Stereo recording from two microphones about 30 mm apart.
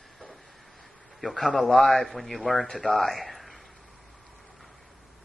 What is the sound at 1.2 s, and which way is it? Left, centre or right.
Speech, centre.